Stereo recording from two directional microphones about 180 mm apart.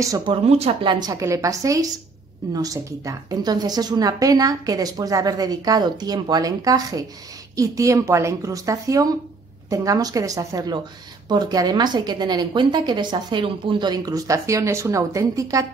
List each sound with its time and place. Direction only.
0.0 s a woman's voice: 20° right (ahead or behind)
0.5 s a woman's voice: 35° right (ahead or behind); by 15.6 s 20° right (ahead or behind)